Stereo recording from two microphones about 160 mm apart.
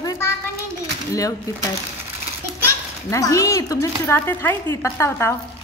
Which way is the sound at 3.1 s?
20° left (ahead or behind).